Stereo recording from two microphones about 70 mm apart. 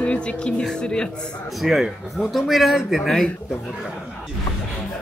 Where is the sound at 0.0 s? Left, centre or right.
Centre.